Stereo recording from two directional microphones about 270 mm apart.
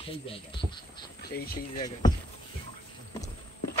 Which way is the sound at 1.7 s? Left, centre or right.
Centre.